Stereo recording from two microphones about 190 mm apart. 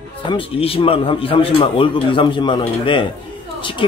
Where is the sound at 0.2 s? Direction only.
25° left (ahead or behind).